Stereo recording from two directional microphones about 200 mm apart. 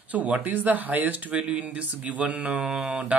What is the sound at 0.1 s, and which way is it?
Speech, 10° right (ahead or behind).